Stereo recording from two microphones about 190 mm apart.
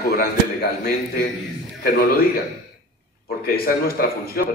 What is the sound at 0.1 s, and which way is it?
Speech, 50° left (ahead or behind).